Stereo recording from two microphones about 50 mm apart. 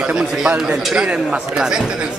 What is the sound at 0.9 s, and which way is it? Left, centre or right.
Speech, right.